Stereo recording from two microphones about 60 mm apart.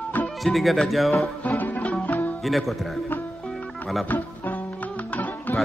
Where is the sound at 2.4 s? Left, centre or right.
Centre.